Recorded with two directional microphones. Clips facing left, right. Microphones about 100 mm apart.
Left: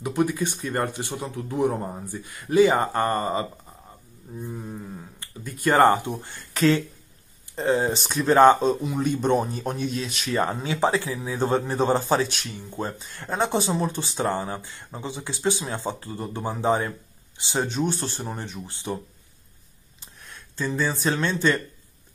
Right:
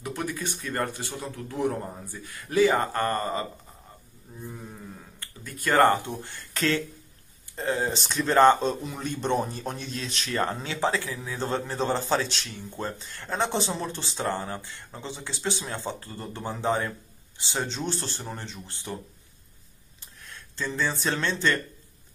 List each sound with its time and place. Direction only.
0.0 s speech: 15° left (ahead or behind)
20.0 s speech: 20° left (ahead or behind)